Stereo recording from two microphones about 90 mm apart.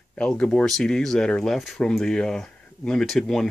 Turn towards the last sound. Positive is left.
turn(degrees=5)  # may be behind; listen again after turning